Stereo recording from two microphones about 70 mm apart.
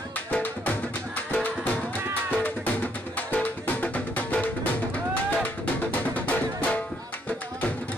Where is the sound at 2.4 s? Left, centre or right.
Left.